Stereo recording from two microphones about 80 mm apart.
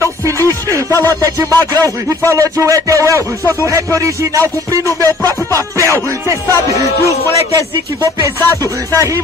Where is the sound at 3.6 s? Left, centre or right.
Right.